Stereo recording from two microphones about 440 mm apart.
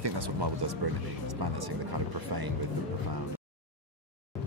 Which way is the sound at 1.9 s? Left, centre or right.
Right.